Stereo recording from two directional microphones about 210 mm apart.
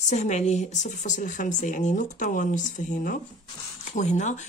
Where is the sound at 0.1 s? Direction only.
35° left (ahead or behind).